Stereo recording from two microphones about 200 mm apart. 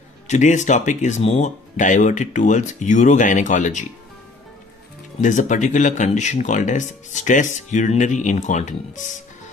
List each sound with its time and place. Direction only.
0.3 s speech: 35° left (ahead or behind)
5.2 s speech: 40° left (ahead or behind)